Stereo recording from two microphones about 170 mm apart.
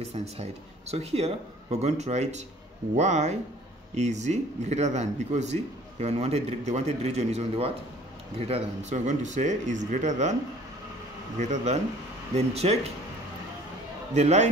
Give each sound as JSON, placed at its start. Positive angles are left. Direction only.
{"t": 0.1, "sound": "a man's voice", "side_deg": -40}
{"t": 11.3, "sound": "a man's voice", "side_deg": -45}
{"t": 14.1, "sound": "a man's voice", "side_deg": -40}